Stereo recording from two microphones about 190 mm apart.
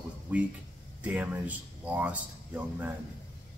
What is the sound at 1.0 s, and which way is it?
A man's voice, 10° right (ahead or behind).